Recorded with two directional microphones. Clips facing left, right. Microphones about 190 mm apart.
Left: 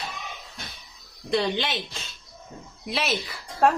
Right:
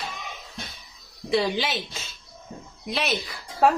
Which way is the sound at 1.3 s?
Centre (ahead or behind).